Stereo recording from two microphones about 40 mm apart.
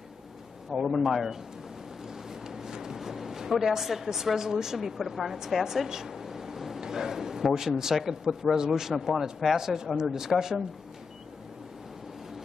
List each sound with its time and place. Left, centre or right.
0.7 s a man's voice: centre
2.4 s speech: centre